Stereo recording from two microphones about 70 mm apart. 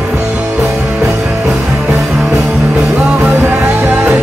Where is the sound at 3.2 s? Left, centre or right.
Right.